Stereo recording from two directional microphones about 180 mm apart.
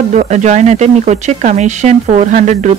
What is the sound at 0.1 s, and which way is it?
Speech, 40° right (ahead or behind).